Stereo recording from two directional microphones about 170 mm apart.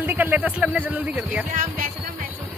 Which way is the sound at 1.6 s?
55° right (ahead or behind).